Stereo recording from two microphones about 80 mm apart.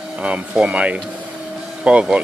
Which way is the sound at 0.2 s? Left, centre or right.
Centre.